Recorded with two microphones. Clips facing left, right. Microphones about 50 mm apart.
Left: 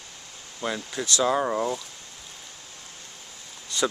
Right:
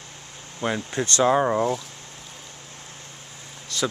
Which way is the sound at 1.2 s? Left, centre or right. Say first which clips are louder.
Right 4 dB; centre.